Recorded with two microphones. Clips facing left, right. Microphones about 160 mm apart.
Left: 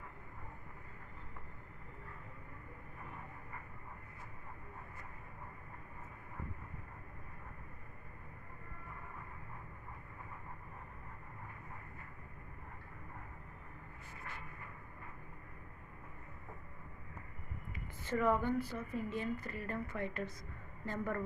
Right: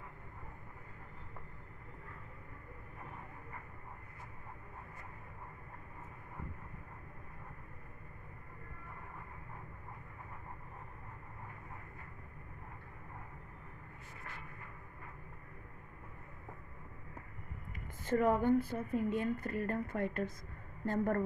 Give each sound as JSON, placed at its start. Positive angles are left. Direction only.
{"t": 17.7, "sound": "a woman's voice", "side_deg": -50}